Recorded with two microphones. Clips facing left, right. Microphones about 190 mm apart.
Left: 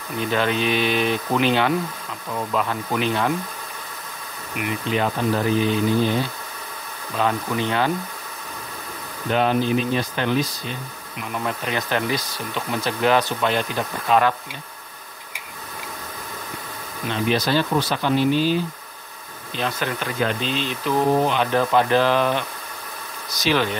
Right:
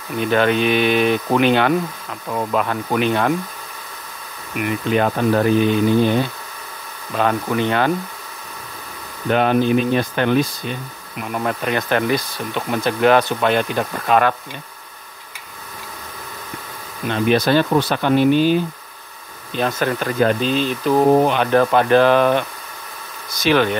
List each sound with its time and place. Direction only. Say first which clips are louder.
0.3 s speech: right 5 dB; 55° right (ahead or behind)
4.6 s speech: right 5 dB; 55° right (ahead or behind)
9.3 s speech: right 4 dB; 55° right (ahead or behind)
17.1 s speech: right 5 dB; 55° right (ahead or behind)
19.5 s speech: right 6 dB; 45° right (ahead or behind)